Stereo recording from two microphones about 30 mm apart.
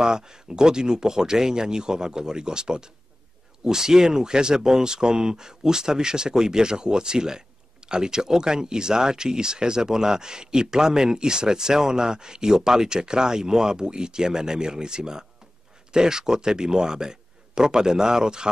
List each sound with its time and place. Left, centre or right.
0.0 s speech: right